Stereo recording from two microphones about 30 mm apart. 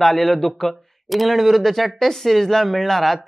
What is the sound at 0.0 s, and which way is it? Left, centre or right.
Speech, centre.